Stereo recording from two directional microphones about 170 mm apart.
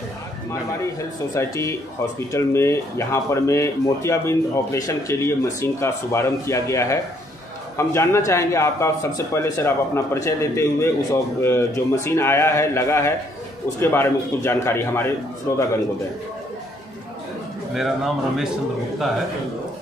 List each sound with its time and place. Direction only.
1.3 s speech: 20° left (ahead or behind)
17.7 s a man's voice: centre (ahead or behind)